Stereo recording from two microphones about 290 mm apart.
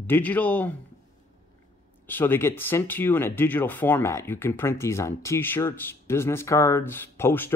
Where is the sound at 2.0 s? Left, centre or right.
Centre.